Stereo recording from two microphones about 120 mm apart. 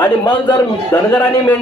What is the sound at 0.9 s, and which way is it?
Speech, 20° left (ahead or behind).